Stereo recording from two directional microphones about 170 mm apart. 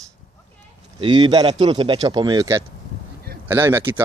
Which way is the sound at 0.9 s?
25° right (ahead or behind).